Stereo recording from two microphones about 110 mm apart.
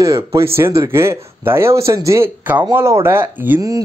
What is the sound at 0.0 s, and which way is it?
Speech, 30° right (ahead or behind).